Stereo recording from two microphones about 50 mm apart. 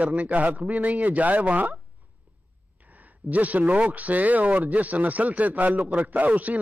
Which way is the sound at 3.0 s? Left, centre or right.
Right.